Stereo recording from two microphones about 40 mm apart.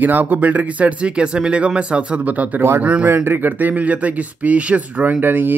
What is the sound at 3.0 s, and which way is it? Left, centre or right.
Speech, right.